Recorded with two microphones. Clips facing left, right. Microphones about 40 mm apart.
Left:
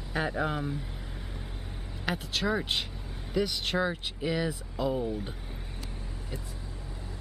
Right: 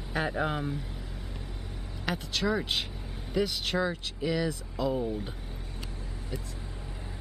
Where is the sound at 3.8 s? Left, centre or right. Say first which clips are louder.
Even; centre.